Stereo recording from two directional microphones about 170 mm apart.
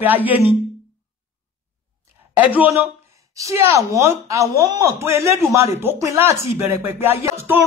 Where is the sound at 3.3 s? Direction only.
20° right (ahead or behind).